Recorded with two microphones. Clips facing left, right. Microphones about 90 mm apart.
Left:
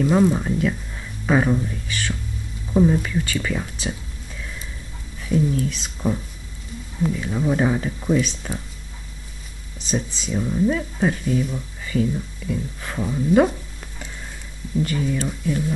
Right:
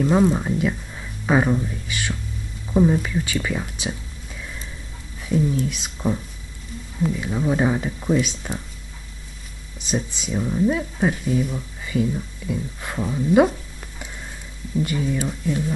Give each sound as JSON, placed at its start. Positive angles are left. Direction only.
{"t": 0.1, "sound": "speech", "side_deg": -5}
{"t": 5.3, "sound": "speech", "side_deg": -10}
{"t": 9.8, "sound": "speech", "side_deg": -15}